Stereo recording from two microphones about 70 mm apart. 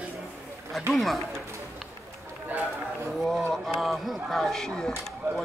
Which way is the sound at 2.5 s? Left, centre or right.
Right.